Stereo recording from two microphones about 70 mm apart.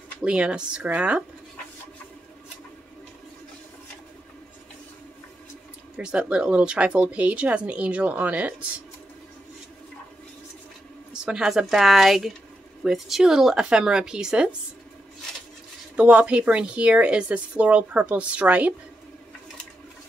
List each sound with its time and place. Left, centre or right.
0.2 s a woman's voice: centre
5.9 s speech: centre
11.2 s a woman's voice: centre
16.0 s speech: centre